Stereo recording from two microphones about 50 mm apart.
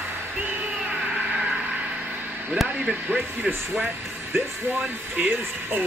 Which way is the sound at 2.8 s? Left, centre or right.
Right.